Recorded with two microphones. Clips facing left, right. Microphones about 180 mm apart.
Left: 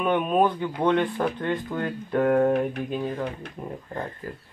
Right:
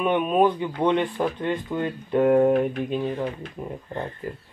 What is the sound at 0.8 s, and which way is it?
Speech, 15° right (ahead or behind).